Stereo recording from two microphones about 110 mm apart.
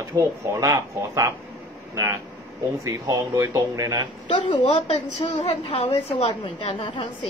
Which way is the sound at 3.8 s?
35° right (ahead or behind).